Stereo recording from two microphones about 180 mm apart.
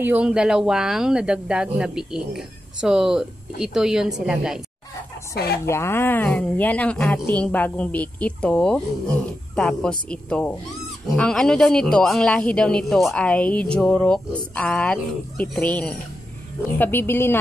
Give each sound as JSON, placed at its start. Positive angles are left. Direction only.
{"t": 0.0, "sound": "speech", "side_deg": -5}
{"t": 5.3, "sound": "speech", "side_deg": 60}
{"t": 5.7, "sound": "speech", "side_deg": 15}